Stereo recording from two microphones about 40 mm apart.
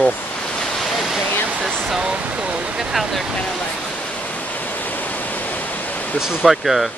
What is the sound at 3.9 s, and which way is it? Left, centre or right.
Waterfall, left.